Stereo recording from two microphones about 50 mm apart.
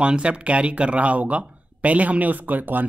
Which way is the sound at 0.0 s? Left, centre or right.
Right.